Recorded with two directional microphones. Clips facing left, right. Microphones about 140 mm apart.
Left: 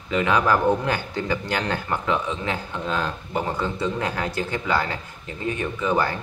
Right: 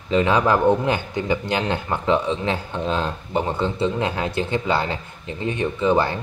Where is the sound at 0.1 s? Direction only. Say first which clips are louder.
Right 3 dB; 30° right (ahead or behind).